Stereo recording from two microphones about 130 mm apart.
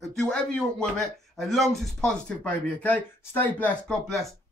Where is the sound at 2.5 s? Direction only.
10° left (ahead or behind).